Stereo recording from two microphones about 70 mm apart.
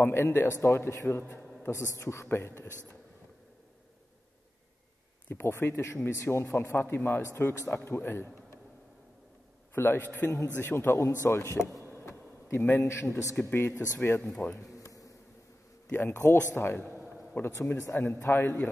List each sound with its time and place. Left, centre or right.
0.0 s speech: left
5.3 s speech: left
9.8 s speech: left
11.8 s a sound: left
13.4 s speech: left
13.7 s speech: left
14.7 s a sound: left
15.9 s speech: left